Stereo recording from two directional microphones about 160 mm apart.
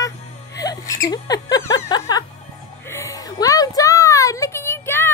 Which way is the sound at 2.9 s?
20° left (ahead or behind).